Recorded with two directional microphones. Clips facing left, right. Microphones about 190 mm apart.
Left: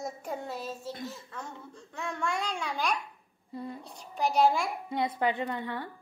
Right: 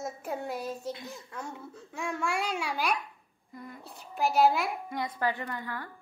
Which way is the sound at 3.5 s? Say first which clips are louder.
Left 6 dB; 30° left (ahead or behind).